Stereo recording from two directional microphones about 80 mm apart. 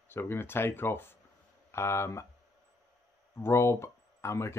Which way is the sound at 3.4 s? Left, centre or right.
Left.